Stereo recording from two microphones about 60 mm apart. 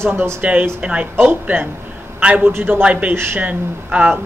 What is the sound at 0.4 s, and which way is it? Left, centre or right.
Speech, right.